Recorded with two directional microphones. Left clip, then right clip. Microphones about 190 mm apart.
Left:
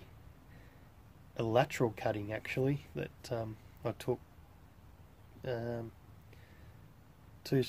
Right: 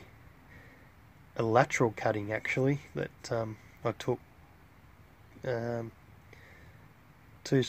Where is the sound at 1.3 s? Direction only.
30° right (ahead or behind).